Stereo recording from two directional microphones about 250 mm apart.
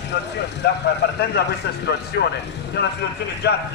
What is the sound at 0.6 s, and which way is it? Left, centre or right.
A man's voice, left.